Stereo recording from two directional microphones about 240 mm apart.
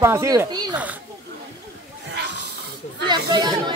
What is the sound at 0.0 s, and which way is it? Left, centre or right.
Speech, centre.